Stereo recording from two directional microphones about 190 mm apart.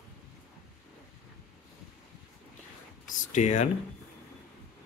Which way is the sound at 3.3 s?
40° left (ahead or behind).